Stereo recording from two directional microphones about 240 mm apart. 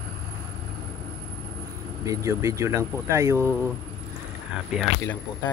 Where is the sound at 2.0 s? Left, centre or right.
Centre.